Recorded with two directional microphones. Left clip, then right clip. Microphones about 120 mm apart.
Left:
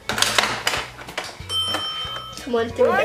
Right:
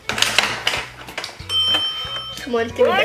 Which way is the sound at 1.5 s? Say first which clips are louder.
Right 6 dB; 5° right (ahead or behind).